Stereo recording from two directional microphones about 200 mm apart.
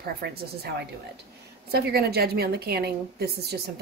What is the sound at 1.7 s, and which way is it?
A woman's voice, 50° right (ahead or behind).